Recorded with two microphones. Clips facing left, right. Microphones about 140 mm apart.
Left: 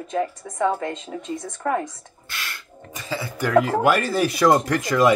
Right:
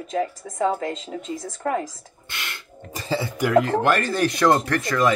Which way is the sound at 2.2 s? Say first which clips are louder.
Even; 20° right (ahead or behind).